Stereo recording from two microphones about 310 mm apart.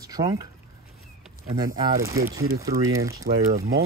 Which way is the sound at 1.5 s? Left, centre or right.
Centre.